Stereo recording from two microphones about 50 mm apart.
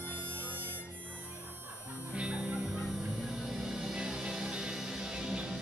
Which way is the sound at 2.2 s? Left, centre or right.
Centre.